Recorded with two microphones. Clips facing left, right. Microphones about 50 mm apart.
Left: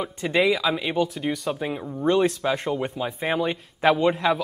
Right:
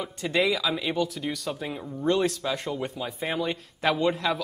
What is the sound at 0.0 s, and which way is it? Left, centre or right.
Speech, centre.